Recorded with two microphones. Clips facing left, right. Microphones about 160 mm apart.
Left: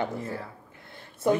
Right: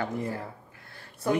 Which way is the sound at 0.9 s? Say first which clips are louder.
Left 3 dB; 25° left (ahead or behind).